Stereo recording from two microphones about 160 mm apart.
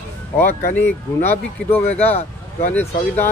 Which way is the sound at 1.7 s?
45° left (ahead or behind).